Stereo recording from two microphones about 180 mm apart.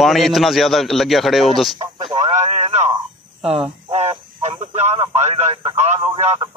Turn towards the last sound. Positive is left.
turn(degrees=-30)  # may be behind; listen again after turning